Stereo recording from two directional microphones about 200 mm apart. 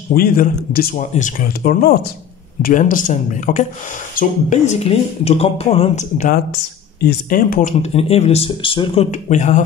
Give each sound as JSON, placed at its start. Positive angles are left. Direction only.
{"t": 0.1, "sound": "speech", "side_deg": 45}